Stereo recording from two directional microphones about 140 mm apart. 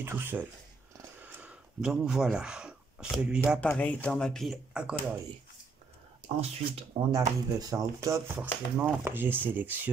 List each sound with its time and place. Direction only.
0.0 s speech: 15° right (ahead or behind)
1.2 s a sound: 10° right (ahead or behind)
3.6 s speech: 10° left (ahead or behind)
6.4 s speech: 45° right (ahead or behind)
7.1 s speech: 25° right (ahead or behind)